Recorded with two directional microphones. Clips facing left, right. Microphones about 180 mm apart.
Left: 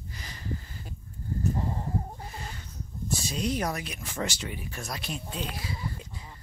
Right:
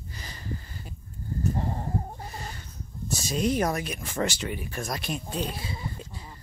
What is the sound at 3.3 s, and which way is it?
Speech, 50° right (ahead or behind).